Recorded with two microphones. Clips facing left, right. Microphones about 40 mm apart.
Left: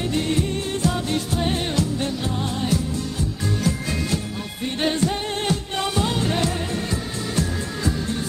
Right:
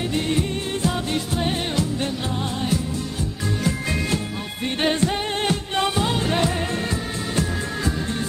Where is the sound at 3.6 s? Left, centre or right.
Right.